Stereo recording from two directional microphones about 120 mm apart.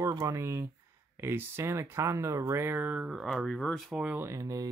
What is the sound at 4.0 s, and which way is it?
Speech, 15° right (ahead or behind).